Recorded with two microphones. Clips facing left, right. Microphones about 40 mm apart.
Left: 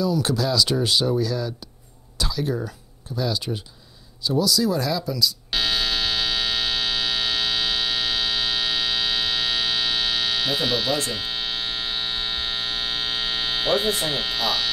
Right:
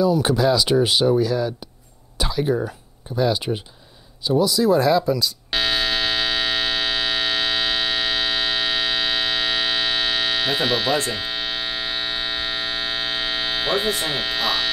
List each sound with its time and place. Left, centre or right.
0.0 s speech: right
5.5 s hum: centre